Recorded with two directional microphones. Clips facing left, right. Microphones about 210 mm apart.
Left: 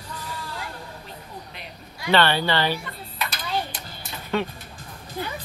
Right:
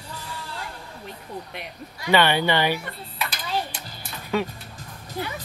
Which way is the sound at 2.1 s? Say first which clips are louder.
Right 1 dB; 15° right (ahead or behind).